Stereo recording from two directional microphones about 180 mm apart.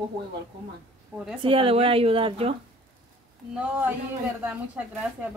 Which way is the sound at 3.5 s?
10° right (ahead or behind).